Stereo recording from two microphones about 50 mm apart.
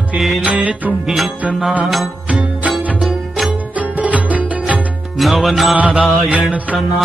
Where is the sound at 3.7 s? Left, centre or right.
Right.